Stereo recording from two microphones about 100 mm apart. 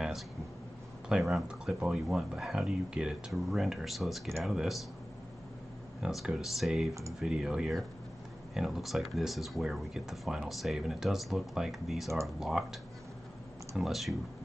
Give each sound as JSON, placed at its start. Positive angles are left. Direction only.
{"t": 1.0, "sound": "speech", "side_deg": -5}
{"t": 6.0, "sound": "speech", "side_deg": -5}
{"t": 6.9, "sound": "speech", "side_deg": -30}
{"t": 7.2, "sound": "speech", "side_deg": -5}
{"t": 13.7, "sound": "speech", "side_deg": 0}